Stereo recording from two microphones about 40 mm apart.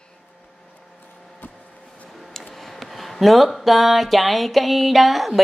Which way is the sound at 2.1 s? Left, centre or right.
Centre.